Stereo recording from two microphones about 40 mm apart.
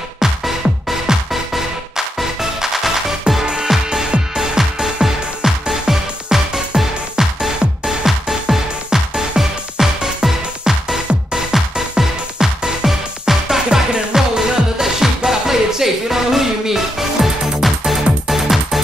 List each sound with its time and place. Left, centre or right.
0.2 s music: centre
11.5 s music: centre